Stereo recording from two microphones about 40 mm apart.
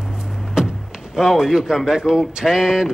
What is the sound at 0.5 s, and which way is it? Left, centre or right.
Speech, centre.